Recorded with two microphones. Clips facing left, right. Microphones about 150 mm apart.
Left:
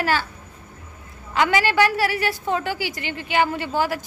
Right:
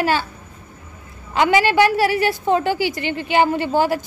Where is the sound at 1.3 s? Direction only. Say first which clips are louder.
Right 4 dB; 20° right (ahead or behind).